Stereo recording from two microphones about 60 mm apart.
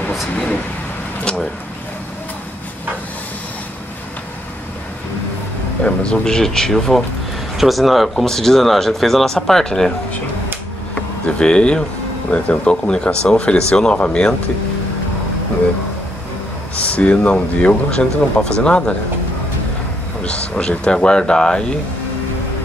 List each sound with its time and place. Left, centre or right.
5.8 s speech: centre
11.2 s speech: centre
16.7 s speech: left
20.2 s speech: centre